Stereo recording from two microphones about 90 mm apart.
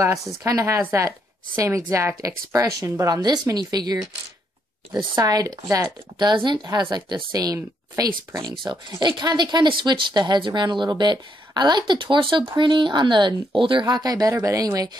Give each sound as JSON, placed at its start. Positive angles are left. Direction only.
{"t": 0.5, "sound": "speech", "side_deg": -35}
{"t": 5.1, "sound": "speech", "side_deg": -40}
{"t": 5.9, "sound": "speech", "side_deg": -55}
{"t": 9.0, "sound": "speech", "side_deg": -55}
{"t": 13.8, "sound": "speech", "side_deg": -45}